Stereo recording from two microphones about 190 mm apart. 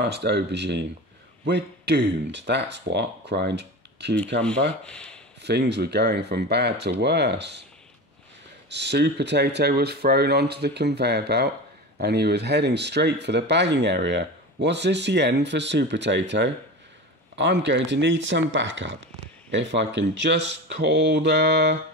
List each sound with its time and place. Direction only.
0.0 s speech: 60° right (ahead or behind)
4.8 s speech: 5° left (ahead or behind)
5.4 s speech: 60° right (ahead or behind)
8.6 s speech: 65° right (ahead or behind)